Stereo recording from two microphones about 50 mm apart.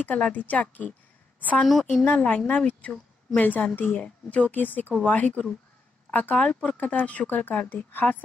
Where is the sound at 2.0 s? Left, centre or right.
Left.